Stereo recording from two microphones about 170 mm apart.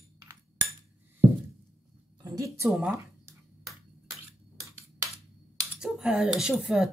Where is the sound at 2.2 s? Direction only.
20° right (ahead or behind).